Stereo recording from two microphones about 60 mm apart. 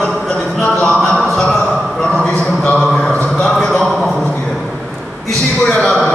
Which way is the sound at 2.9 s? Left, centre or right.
Centre.